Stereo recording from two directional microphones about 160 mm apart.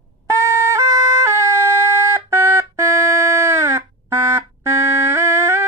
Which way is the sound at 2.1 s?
15° right (ahead or behind).